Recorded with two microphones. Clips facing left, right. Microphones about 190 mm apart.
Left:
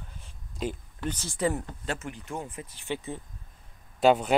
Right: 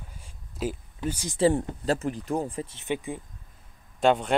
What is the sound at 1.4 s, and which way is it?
Speech, 30° right (ahead or behind).